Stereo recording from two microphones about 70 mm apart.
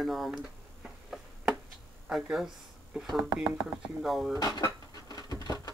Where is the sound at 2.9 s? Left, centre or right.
Centre.